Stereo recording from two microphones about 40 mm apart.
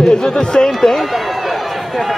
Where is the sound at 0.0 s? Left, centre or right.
Left.